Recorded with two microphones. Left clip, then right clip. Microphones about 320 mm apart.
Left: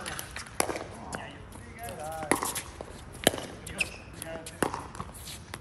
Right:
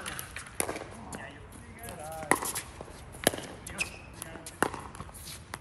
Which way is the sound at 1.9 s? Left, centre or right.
Centre.